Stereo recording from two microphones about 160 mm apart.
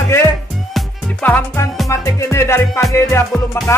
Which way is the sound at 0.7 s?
10° left (ahead or behind).